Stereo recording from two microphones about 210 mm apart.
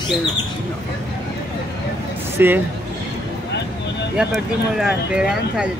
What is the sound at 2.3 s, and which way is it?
Speech, 10° right (ahead or behind).